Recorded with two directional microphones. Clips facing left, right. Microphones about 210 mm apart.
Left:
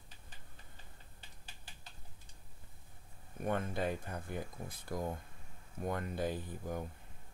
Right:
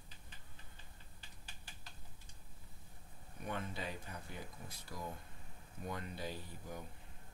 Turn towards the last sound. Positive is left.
turn(degrees=50)  # may be behind; listen again after turning